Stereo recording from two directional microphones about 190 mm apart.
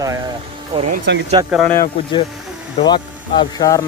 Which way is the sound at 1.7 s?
20° left (ahead or behind).